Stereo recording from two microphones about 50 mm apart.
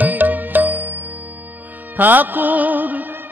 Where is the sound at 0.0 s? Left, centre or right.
Right.